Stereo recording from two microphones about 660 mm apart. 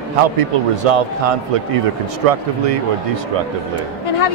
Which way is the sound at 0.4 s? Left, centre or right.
Right.